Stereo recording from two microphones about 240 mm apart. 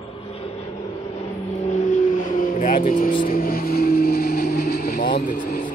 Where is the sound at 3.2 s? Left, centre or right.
Left.